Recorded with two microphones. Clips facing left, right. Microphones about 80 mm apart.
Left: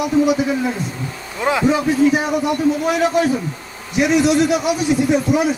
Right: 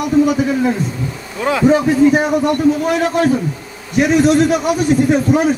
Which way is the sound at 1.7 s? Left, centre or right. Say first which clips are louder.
Right 5 dB; right.